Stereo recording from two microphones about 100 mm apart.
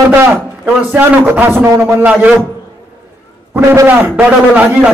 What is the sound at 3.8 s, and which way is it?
A man's voice, 15° right (ahead or behind).